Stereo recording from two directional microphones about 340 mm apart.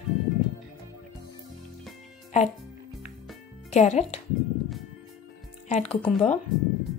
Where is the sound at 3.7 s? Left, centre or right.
Centre.